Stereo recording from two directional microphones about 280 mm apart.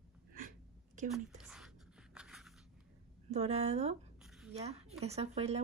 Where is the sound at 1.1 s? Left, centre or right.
Centre.